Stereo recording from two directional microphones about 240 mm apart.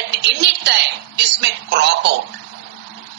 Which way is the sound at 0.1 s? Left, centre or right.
Right.